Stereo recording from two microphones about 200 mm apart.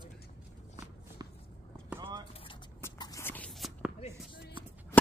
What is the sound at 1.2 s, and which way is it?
Walk, 20° right (ahead or behind).